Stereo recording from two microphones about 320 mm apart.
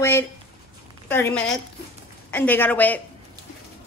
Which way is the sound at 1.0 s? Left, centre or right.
Centre.